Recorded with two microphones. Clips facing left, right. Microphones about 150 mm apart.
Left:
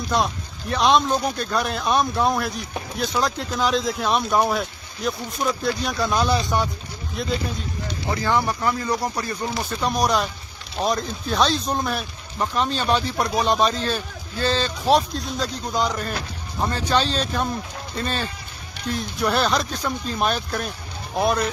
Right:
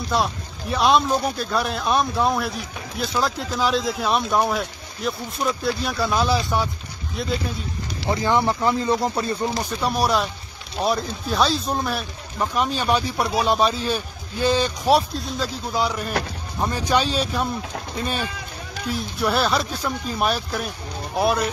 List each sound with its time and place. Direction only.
0.1 s speech: 5° right (ahead or behind)
8.1 s speech: 20° right (ahead or behind)
9.6 s speech: 10° right (ahead or behind)